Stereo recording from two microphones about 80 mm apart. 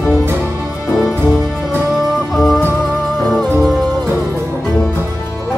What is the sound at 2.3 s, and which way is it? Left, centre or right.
Music, centre.